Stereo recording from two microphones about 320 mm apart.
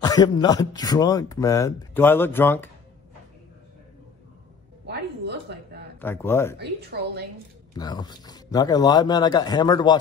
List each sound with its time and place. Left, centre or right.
0.0 s speech: centre
4.8 s a sound: right
5.9 s speech: centre
6.6 s a woman's voice: right
7.7 s speech: centre